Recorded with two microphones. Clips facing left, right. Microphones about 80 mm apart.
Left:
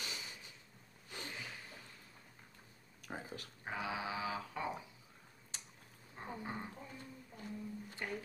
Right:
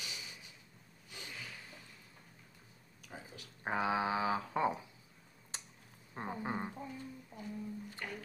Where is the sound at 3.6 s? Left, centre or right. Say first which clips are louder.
Right 8 dB; right.